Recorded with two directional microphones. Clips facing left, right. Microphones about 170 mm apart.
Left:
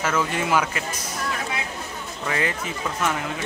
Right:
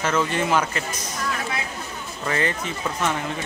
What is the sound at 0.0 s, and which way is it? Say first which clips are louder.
Speech: right 1 dB; 5° left (ahead or behind).